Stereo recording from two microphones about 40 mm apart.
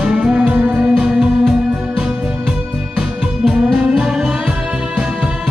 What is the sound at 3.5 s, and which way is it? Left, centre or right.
Music, right.